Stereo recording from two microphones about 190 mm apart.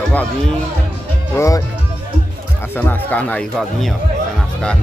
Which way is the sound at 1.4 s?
15° left (ahead or behind).